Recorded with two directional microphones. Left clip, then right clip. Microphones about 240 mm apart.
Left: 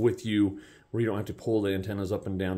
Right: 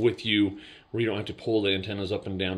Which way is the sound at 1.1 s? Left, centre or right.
Centre.